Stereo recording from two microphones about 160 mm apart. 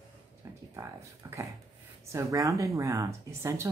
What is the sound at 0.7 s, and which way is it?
Speech, 20° right (ahead or behind).